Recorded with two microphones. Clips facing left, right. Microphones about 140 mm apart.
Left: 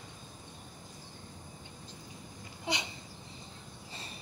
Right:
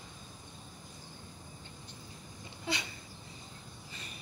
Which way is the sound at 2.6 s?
20° left (ahead or behind).